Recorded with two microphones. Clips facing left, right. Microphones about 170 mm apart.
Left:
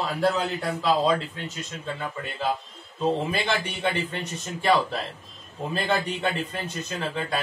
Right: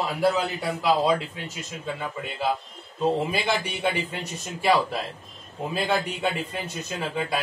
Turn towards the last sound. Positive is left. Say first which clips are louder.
# right 1 dB
turn(degrees=-10)  # may be behind; listen again after turning